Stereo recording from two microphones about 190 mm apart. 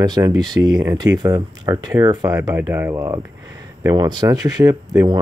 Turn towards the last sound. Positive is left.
turn(degrees=-20)  # may be behind; listen again after turning